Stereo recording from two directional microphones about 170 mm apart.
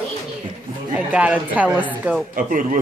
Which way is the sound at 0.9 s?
10° right (ahead or behind).